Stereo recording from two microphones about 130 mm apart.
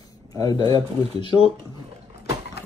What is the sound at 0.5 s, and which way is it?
Speech, 40° right (ahead or behind).